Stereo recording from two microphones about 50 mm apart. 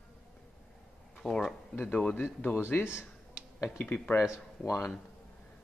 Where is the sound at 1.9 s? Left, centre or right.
Left.